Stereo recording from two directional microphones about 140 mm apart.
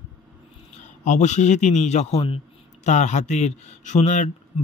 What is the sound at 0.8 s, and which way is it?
A man's voice, 60° left (ahead or behind).